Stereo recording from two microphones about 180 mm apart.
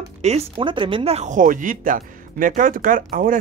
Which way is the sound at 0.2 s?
35° right (ahead or behind).